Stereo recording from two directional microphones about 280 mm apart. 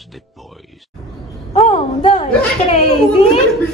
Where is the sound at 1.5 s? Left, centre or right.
Centre.